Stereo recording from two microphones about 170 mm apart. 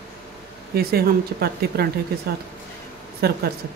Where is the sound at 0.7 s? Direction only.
65° right (ahead or behind).